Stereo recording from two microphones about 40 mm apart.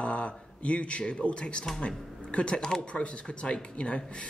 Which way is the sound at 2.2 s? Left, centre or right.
Left.